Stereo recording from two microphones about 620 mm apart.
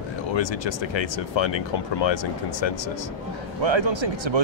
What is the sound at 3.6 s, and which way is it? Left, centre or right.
Speech, right.